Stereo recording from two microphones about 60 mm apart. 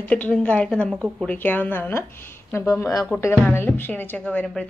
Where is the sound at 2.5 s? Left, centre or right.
Left.